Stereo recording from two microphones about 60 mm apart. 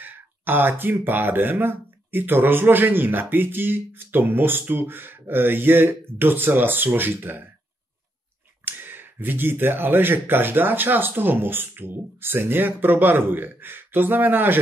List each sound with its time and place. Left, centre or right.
0.0 s speech: right
8.6 s speech: right